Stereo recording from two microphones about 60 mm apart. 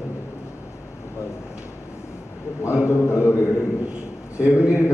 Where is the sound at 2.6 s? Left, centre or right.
Left.